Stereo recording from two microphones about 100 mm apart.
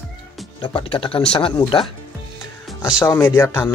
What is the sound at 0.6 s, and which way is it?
Speech, 55° left (ahead or behind).